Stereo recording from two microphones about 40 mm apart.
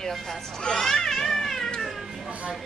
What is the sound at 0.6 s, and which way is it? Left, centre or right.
Cat, centre.